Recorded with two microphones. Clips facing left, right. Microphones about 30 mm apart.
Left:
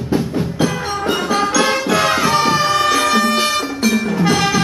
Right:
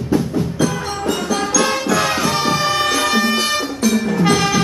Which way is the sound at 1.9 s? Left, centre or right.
Centre.